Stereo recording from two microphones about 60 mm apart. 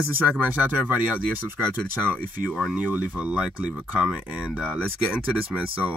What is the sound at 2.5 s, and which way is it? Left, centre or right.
Speech, centre.